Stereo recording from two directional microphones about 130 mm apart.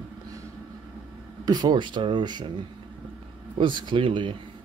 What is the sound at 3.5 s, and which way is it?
Speech, 40° right (ahead or behind).